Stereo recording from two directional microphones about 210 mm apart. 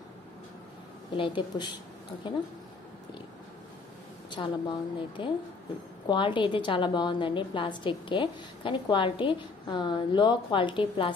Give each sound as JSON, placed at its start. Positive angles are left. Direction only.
{"t": 1.1, "sound": "a woman's voice", "side_deg": 25}
{"t": 4.3, "sound": "a woman's voice", "side_deg": 20}